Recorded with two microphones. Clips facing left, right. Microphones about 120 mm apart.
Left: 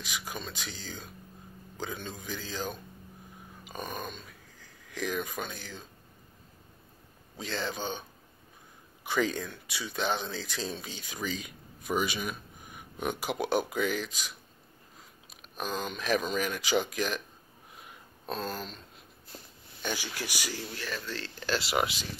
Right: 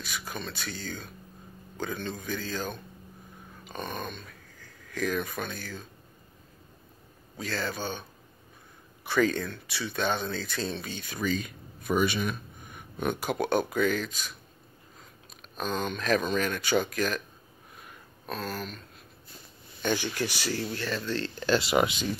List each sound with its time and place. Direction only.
0.0 s speech: 15° left (ahead or behind)
7.3 s speech: 20° left (ahead or behind)
9.0 s speech: 15° left (ahead or behind)
18.2 s speech: 25° left (ahead or behind)
19.8 s speech: 10° left (ahead or behind)